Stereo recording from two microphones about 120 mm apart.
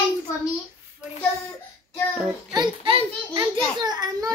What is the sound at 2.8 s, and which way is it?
A child's voice, 40° right (ahead or behind).